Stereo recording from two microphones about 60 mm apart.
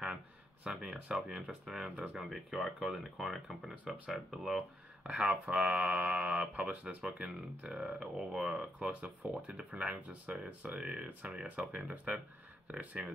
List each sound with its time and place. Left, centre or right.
0.7 s speech: centre
2.2 s speech: centre
3.7 s speech: right
4.1 s speech: centre
5.0 s speech: centre